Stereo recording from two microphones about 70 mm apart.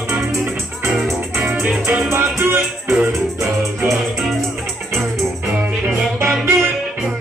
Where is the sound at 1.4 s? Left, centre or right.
Right.